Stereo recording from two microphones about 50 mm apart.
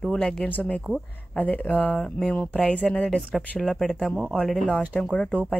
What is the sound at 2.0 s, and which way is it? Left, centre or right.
Speech, centre.